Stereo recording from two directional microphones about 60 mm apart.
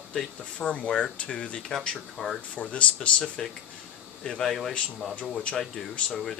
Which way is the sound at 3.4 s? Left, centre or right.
Centre.